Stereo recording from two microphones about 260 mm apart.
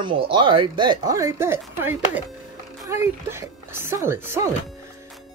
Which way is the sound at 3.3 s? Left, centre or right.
Centre.